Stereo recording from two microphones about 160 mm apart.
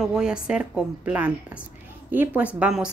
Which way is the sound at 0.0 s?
5° right (ahead or behind).